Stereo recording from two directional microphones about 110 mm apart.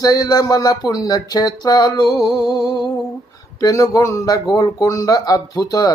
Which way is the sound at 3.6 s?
30° left (ahead or behind).